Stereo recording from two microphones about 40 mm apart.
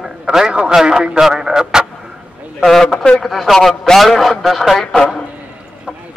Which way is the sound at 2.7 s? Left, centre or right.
Centre.